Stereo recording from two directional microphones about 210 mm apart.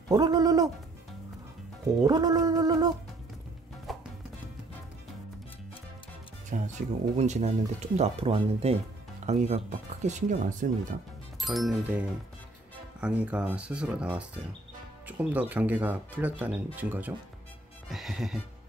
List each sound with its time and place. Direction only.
0.1 s a sound: 15° right (ahead or behind)
2.0 s a sound: 20° right (ahead or behind)
3.9 s music: centre (ahead or behind)
6.5 s speech: 40° right (ahead or behind)
11.4 s speech: centre (ahead or behind)
17.8 s music: centre (ahead or behind)